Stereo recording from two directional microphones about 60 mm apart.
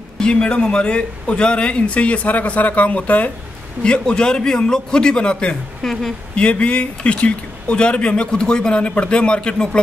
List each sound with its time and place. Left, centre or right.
0.2 s speech: centre
6.3 s speech: centre